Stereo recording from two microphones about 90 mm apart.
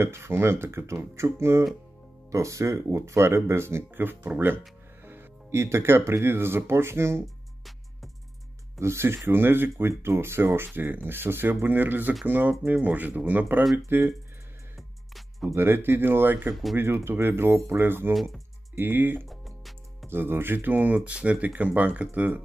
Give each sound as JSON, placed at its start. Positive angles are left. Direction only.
{"t": 0.0, "sound": "speech", "side_deg": -30}
{"t": 8.7, "sound": "speech", "side_deg": -30}
{"t": 14.8, "sound": "music", "side_deg": 0}
{"t": 15.5, "sound": "speech", "side_deg": -25}
{"t": 18.1, "sound": "speech", "side_deg": 0}
{"t": 18.8, "sound": "speech", "side_deg": -20}
{"t": 19.2, "sound": "music", "side_deg": 0}
{"t": 20.1, "sound": "speech", "side_deg": -25}